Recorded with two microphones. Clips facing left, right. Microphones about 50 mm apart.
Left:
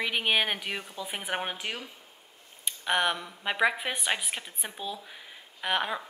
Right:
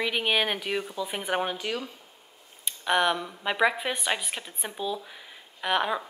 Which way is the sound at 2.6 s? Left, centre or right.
Centre.